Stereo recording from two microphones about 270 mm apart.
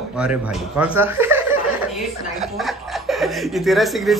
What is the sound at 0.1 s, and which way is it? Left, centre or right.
Speech, centre.